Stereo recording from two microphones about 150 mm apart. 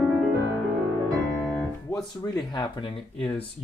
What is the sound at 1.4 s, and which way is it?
Piano, 5° left (ahead or behind).